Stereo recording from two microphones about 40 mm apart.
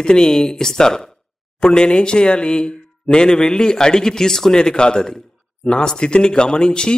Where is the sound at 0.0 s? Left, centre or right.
Centre.